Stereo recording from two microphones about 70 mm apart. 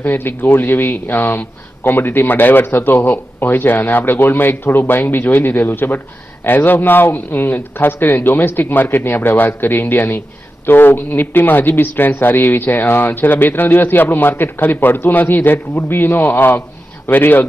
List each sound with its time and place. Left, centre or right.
0.0 s speech: left